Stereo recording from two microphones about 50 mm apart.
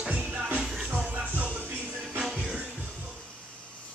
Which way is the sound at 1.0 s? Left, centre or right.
Right.